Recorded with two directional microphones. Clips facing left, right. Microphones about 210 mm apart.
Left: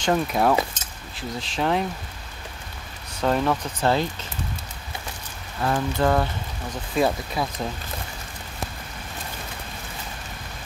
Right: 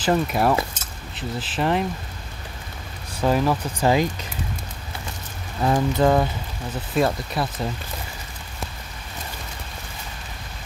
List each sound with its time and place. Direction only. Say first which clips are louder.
0.0 s speech: right 1 dB; centre (ahead or behind)
3.2 s speech: right 2 dB; 5° right (ahead or behind)
5.6 s speech: right 3 dB; 15° right (ahead or behind)
6.7 s speech: right 1 dB; centre (ahead or behind)